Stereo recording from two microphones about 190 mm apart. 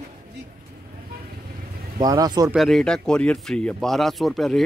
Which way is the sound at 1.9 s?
20° right (ahead or behind).